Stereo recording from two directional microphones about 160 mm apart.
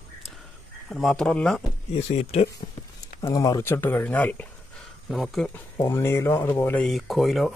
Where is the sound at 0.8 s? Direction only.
5° left (ahead or behind).